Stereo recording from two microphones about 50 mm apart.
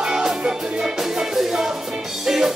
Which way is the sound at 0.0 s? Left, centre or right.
Centre.